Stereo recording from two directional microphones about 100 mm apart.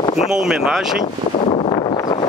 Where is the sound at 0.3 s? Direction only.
5° right (ahead or behind).